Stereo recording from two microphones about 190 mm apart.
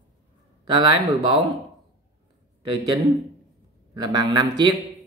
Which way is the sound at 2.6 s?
25° right (ahead or behind).